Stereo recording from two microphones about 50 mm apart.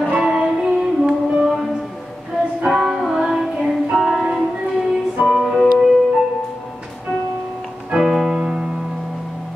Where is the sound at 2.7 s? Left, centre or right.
Centre.